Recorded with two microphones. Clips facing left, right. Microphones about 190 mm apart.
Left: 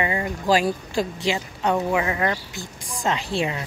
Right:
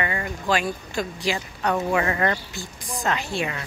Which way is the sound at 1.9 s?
10° left (ahead or behind).